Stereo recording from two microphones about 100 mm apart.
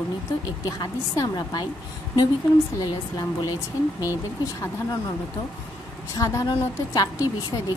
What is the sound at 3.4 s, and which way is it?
Speech, 40° left (ahead or behind).